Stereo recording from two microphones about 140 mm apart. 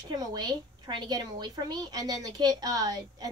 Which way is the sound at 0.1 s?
30° right (ahead or behind).